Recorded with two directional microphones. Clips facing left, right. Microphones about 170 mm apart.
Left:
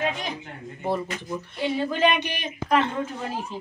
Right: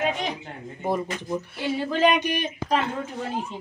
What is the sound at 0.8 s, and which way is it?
Speech, 15° right (ahead or behind).